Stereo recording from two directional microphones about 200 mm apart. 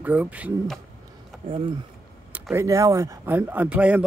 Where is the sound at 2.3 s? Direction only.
10° right (ahead or behind).